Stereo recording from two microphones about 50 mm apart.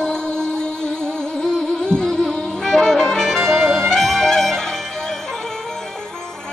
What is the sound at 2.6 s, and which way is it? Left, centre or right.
Saxophone, centre.